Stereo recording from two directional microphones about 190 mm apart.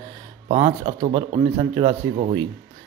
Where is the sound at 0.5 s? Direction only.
30° right (ahead or behind).